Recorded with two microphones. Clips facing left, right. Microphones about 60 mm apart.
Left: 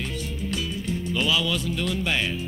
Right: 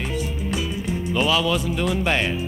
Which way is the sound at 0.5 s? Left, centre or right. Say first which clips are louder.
Right 1 dB; centre.